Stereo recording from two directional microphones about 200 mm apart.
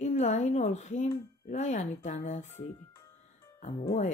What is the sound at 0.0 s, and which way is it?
A woman's voice, 35° left (ahead or behind).